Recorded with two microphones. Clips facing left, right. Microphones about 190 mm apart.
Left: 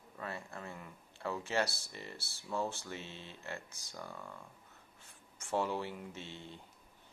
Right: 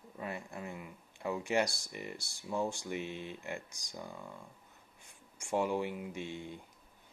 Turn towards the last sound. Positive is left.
turn(degrees=-15)  # may be behind; listen again after turning